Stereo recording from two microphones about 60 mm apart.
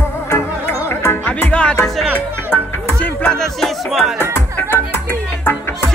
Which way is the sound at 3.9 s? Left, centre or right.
Centre.